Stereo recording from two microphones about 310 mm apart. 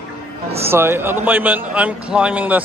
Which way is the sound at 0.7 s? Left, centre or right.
Centre.